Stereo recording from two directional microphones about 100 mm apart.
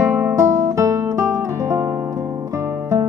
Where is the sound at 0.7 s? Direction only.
30° right (ahead or behind).